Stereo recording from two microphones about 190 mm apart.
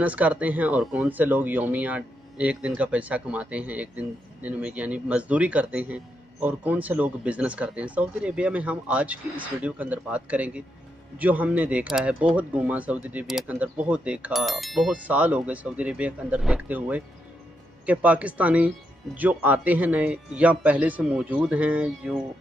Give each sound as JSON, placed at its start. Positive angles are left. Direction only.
{"t": 0.0, "sound": "speech", "side_deg": -10}